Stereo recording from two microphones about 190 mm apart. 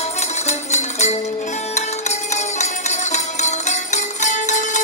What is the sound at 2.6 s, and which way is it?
Music, 40° left (ahead or behind).